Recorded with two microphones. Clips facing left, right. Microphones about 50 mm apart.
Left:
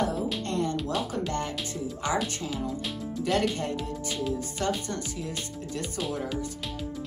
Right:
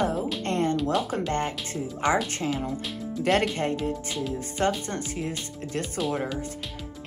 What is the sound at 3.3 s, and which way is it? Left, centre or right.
Speech, right.